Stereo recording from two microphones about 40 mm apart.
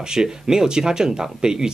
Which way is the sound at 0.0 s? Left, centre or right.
Centre.